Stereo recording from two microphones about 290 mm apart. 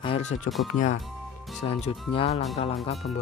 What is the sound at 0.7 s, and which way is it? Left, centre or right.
Speech, left.